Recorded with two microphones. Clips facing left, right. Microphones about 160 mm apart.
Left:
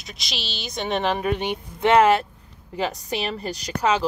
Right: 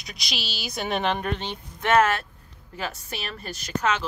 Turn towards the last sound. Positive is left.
turn(degrees=15)  # may be behind; listen again after turning